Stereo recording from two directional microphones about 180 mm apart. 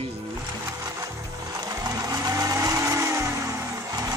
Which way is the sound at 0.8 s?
15° right (ahead or behind).